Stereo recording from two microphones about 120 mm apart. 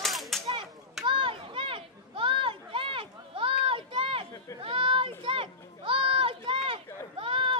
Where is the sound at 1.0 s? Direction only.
45° right (ahead or behind).